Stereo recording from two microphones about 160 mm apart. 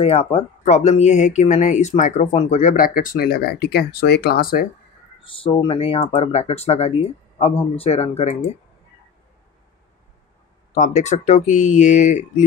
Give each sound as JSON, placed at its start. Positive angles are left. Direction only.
{"t": 0.0, "sound": "speech", "side_deg": 40}
{"t": 2.7, "sound": "speech", "side_deg": 60}
{"t": 5.2, "sound": "speech", "side_deg": 35}
{"t": 10.7, "sound": "speech", "side_deg": 45}